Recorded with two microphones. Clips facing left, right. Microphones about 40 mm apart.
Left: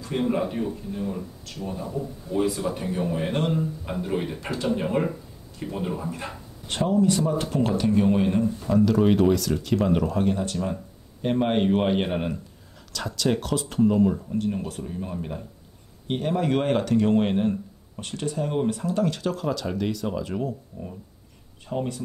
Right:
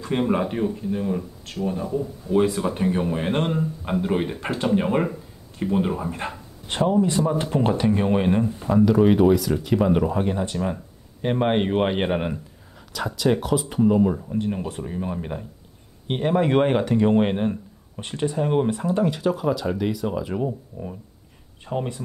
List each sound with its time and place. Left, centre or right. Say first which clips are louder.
0.3 s speech: right 3 dB; right
2.3 s speech: right 4 dB; right